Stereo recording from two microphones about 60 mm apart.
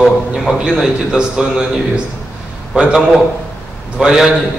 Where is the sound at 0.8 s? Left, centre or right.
Centre.